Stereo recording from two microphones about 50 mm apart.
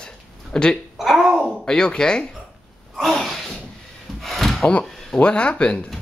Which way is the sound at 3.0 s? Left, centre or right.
Centre.